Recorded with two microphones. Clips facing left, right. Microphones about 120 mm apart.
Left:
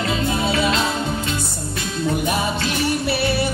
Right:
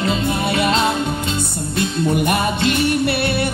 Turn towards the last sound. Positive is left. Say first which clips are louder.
# right 2 dB
turn(degrees=-60)  # may be behind; listen again after turning